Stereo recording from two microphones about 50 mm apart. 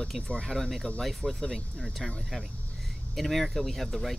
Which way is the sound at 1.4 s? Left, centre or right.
Centre.